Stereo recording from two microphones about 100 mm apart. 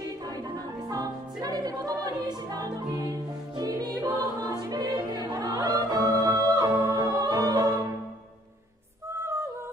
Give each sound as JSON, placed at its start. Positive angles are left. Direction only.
{"t": 0.8, "sound": "music", "side_deg": -40}